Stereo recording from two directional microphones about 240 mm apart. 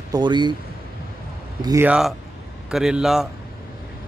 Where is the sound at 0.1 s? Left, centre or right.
Centre.